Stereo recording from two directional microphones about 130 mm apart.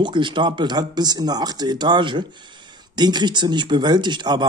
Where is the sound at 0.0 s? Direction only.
40° right (ahead or behind).